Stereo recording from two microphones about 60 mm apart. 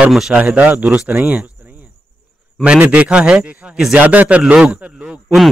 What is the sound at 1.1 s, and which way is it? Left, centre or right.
Speech, right.